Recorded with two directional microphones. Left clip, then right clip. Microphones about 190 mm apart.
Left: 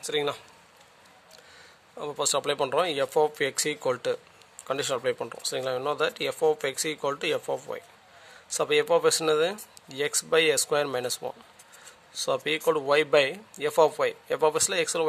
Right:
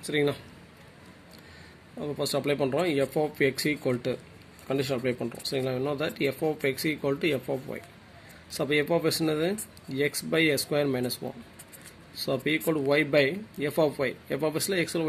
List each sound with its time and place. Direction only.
0.0 s speech: 50° left (ahead or behind)
2.0 s speech: 55° left (ahead or behind)